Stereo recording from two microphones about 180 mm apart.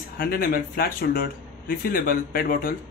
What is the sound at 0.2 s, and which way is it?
A man's voice, 55° left (ahead or behind).